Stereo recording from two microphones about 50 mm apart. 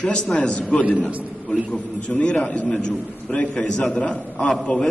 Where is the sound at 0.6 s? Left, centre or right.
Left.